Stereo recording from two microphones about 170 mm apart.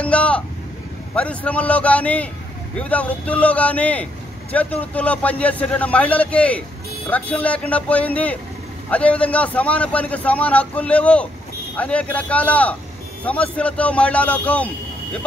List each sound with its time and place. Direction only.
0.0 s vehicle: 5° left (ahead or behind)
1.1 s speech: 10° left (ahead or behind)